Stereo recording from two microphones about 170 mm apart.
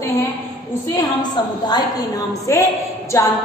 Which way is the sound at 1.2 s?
25° left (ahead or behind).